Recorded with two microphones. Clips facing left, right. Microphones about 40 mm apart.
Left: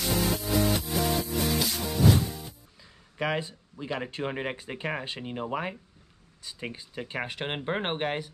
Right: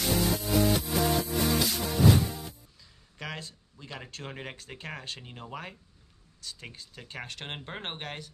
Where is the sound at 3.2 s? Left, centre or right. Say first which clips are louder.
Left 10 dB; centre.